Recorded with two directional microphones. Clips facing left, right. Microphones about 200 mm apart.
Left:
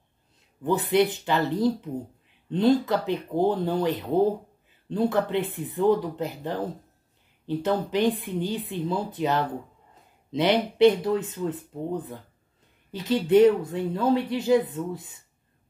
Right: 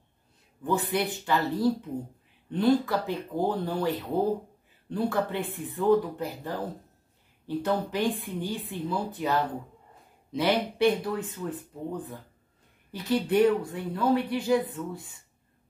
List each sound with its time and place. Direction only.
0.7 s speech: 20° left (ahead or behind)
10.3 s speech: 20° left (ahead or behind)